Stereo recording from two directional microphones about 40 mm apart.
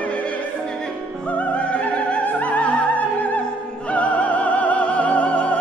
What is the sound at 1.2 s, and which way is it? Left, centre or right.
Opera, left.